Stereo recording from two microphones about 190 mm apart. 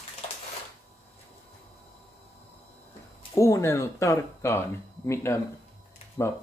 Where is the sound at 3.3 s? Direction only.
15° left (ahead or behind).